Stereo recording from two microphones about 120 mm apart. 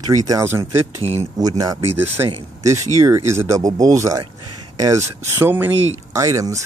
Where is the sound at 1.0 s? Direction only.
55° right (ahead or behind).